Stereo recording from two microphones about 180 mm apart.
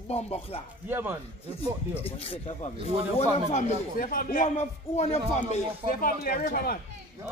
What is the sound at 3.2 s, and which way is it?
Speech, 35° left (ahead or behind).